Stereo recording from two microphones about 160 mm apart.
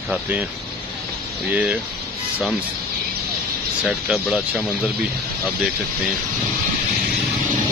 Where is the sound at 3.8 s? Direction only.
Centre (ahead or behind).